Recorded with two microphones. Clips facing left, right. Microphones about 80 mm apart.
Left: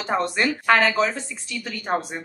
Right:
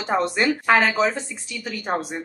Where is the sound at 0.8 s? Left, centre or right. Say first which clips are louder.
Even; right.